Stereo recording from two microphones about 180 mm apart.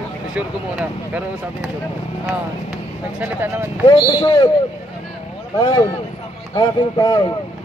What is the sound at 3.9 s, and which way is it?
Speech, 25° left (ahead or behind).